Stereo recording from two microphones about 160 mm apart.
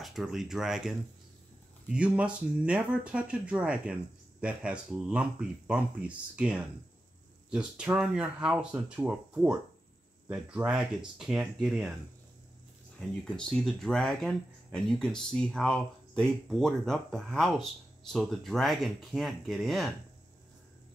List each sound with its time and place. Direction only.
0.0 s speech: centre (ahead or behind)
13.2 s speech: 5° left (ahead or behind)